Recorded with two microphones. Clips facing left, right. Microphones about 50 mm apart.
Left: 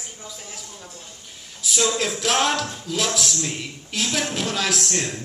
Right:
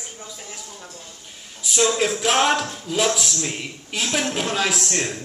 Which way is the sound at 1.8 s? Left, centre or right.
Centre.